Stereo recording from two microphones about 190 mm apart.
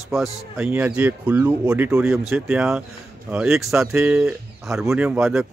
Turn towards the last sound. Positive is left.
turn(degrees=-5)  # may be behind; listen again after turning